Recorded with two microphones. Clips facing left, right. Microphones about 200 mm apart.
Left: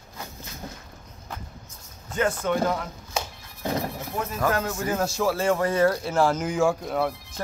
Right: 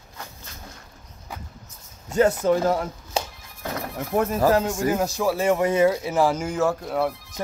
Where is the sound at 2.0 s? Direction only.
40° right (ahead or behind).